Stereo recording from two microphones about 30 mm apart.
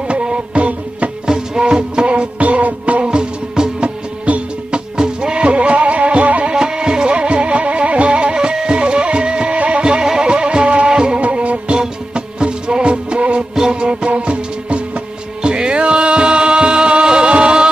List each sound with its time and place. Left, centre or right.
0.1 s music: right
1.2 s music: right
2.0 s music: right
3.1 s music: right
3.8 s music: right
6.4 s music: right
10.9 s music: right
11.1 s music: right
11.5 s music: right